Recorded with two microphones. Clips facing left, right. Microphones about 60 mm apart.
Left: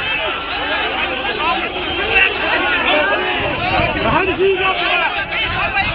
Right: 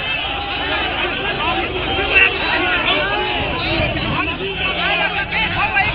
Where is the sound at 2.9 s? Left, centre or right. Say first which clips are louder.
Left 4 dB; centre.